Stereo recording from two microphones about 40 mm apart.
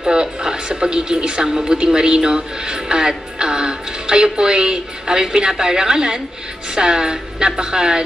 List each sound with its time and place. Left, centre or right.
0.0 s a woman's voice: centre